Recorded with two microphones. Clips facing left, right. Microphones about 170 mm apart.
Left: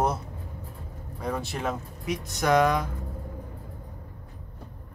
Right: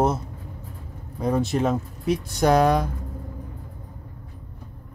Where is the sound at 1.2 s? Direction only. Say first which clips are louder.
Right 8 dB; 25° right (ahead or behind).